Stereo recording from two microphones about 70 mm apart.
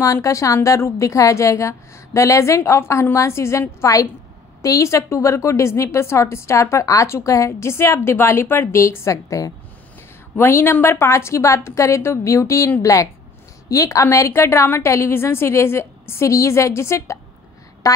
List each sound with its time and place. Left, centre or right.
0.0 s a woman's voice: left
10.3 s a woman's voice: left
14.0 s a woman's voice: left
17.8 s a sound: left